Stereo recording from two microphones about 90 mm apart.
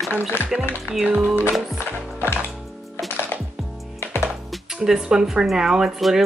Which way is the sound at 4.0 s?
25° left (ahead or behind).